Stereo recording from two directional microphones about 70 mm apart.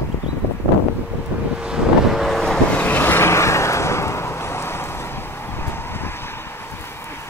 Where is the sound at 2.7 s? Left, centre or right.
Left.